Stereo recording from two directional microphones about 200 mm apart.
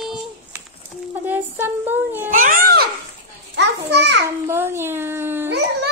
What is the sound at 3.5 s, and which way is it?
Children playing, 60° right (ahead or behind).